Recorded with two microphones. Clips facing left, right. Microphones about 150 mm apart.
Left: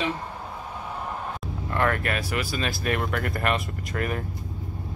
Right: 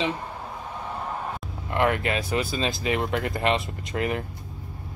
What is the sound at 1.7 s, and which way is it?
Speech, 20° right (ahead or behind).